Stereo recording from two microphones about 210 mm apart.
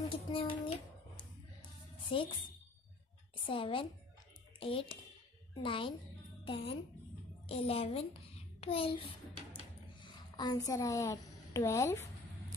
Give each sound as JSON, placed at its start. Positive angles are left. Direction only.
{"t": 0.3, "sound": "a child's voice", "side_deg": 25}
{"t": 1.1, "sound": "music", "side_deg": 25}
{"t": 3.4, "sound": "a child's voice", "side_deg": 25}
{"t": 7.4, "sound": "a sound", "side_deg": 30}
{"t": 10.3, "sound": "a woman's voice", "side_deg": 20}